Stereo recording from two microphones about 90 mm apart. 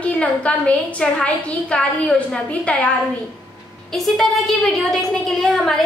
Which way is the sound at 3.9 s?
Centre (ahead or behind).